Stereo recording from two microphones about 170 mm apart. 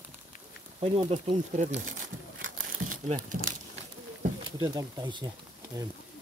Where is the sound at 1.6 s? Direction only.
45° right (ahead or behind).